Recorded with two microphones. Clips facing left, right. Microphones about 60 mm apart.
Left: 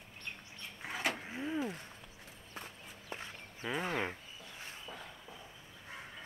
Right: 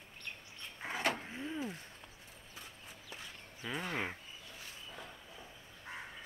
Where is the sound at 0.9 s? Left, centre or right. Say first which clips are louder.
Right 1 dB; centre.